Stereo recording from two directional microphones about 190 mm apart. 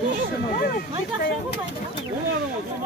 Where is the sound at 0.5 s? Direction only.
50° left (ahead or behind).